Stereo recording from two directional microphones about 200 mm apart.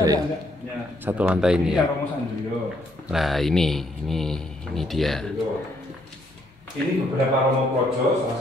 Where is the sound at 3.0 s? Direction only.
Centre (ahead or behind).